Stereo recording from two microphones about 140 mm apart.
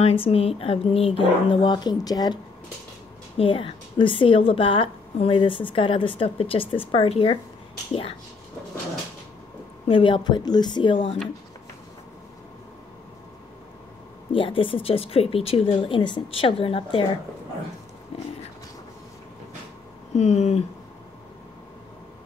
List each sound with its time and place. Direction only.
0.0 s a woman's voice: 40° left (ahead or behind)
3.3 s a woman's voice: 40° left (ahead or behind)
9.8 s a woman's voice: 40° left (ahead or behind)
14.3 s a woman's voice: 40° left (ahead or behind)
18.1 s a sound: 45° left (ahead or behind)
20.2 s speech: 50° left (ahead or behind)